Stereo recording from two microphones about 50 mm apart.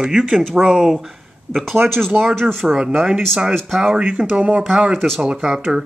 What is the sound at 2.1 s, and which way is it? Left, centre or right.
Speech, centre.